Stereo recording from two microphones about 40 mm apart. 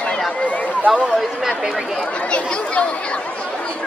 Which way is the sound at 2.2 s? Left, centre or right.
Left.